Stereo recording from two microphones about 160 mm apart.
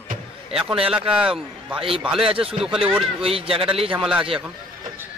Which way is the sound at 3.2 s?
35° right (ahead or behind).